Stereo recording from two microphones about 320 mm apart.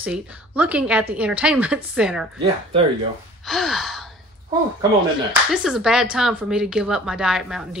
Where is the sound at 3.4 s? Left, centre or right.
Centre.